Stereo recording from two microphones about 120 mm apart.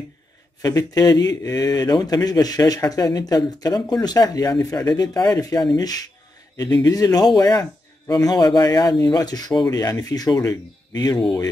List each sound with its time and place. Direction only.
0.6 s speech: 30° left (ahead or behind)